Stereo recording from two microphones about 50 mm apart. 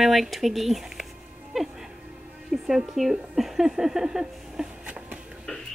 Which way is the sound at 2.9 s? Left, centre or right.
Centre.